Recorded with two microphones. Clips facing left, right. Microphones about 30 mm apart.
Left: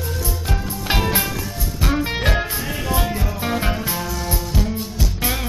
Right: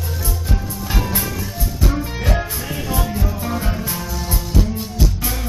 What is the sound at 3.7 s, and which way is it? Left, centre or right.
Music, centre.